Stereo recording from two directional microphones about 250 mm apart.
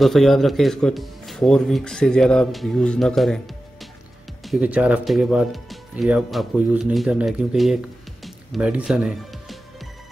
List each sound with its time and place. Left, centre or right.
0.0 s speech: centre
4.5 s speech: centre